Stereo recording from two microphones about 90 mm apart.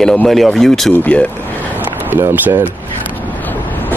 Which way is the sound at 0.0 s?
5° left (ahead or behind).